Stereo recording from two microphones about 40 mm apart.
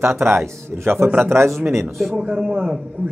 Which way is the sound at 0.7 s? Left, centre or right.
Right.